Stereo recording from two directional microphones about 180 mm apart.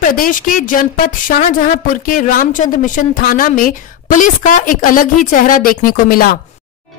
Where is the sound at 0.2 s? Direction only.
50° left (ahead or behind).